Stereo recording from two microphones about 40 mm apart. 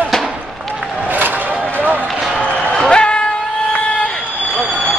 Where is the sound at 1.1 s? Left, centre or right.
Right.